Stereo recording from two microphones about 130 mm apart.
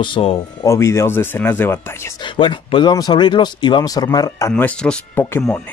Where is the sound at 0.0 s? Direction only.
45° left (ahead or behind).